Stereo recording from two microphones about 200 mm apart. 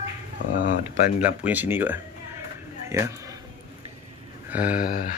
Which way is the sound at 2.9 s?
15° right (ahead or behind).